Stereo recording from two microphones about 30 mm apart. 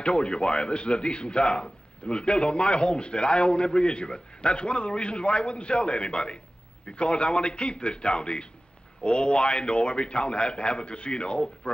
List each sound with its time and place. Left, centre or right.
0.0 s speech: left